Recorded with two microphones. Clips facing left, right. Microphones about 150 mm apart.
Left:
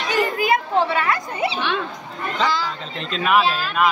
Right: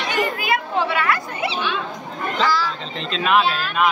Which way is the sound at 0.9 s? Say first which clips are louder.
Even; 25° left (ahead or behind).